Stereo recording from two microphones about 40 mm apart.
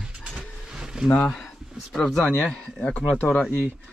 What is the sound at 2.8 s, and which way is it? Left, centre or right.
Speech, left.